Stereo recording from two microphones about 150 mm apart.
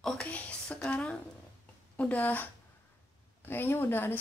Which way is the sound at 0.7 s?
10° left (ahead or behind).